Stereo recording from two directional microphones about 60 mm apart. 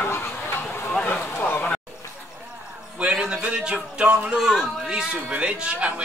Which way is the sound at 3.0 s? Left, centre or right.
Centre.